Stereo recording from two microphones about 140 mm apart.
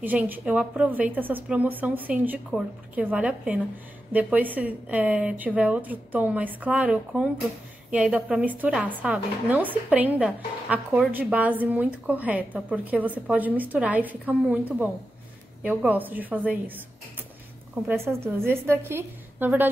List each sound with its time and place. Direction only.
0.0 s a woman's voice: 10° right (ahead or behind)
17.8 s a woman's voice: 20° right (ahead or behind)